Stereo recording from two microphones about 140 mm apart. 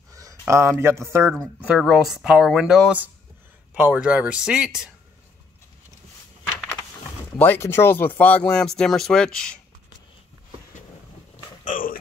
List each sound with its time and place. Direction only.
0.1 s speech: 20° right (ahead or behind)
1.8 s speech: centre (ahead or behind)
7.3 s speech: 15° left (ahead or behind)
11.6 s a sound: 75° left (ahead or behind)